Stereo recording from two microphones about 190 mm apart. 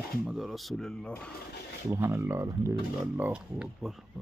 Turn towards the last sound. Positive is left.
turn(degrees=-5)  # may be behind; listen again after turning